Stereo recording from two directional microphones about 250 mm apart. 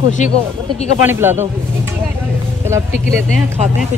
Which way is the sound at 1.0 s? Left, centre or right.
Centre.